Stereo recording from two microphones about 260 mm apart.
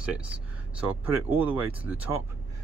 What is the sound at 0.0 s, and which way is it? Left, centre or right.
Speech, centre.